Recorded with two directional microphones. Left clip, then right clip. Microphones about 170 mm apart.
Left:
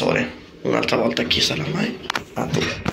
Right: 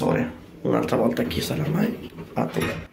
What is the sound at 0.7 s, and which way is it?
Speech, 20° right (ahead or behind).